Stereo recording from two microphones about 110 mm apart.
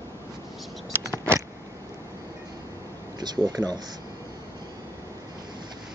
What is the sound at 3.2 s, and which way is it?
Speech, 40° right (ahead or behind).